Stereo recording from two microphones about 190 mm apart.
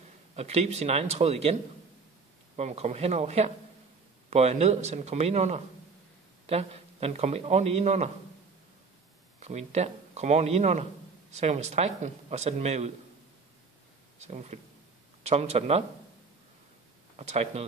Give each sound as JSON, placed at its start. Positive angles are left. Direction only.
{"t": 0.4, "sound": "a man's voice", "side_deg": -35}
{"t": 9.4, "sound": "a man's voice", "side_deg": -35}
{"t": 14.2, "sound": "a man's voice", "side_deg": -35}
{"t": 17.2, "sound": "a man's voice", "side_deg": -35}